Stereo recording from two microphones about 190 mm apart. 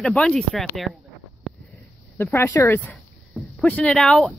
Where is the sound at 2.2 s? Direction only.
10° left (ahead or behind).